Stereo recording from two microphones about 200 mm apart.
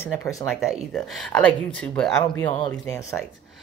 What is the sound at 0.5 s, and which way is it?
Speech, centre (ahead or behind).